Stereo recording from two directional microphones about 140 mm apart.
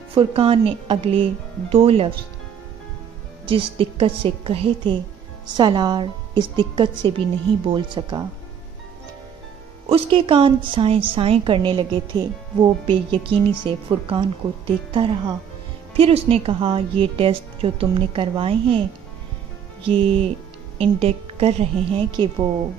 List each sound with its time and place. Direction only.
0.1 s a woman's voice: 40° right (ahead or behind)
3.4 s a woman's voice: 40° right (ahead or behind)
9.8 s a woman's voice: 40° right (ahead or behind)
19.8 s a woman's voice: 40° right (ahead or behind)
22.1 s a woman's voice: 35° right (ahead or behind)